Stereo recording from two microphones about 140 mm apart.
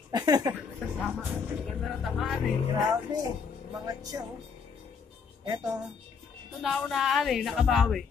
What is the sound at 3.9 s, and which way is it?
Speech, 25° right (ahead or behind).